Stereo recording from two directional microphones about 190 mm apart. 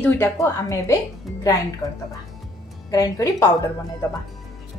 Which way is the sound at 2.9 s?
15° left (ahead or behind).